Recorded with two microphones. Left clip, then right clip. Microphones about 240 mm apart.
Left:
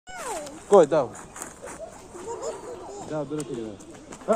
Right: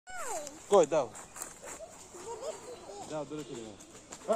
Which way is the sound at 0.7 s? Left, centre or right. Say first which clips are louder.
Left 8 dB; centre.